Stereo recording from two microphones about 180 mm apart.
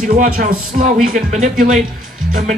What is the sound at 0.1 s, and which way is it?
Speech, 50° right (ahead or behind).